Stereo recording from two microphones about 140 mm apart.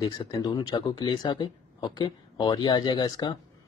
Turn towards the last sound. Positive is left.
turn(degrees=30)  # may be behind; listen again after turning